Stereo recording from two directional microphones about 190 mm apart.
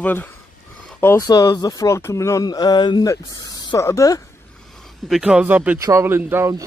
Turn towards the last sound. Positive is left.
turn(degrees=-15)  # may be behind; listen again after turning